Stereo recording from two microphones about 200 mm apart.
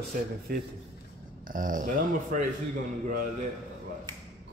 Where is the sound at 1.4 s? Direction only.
40° right (ahead or behind).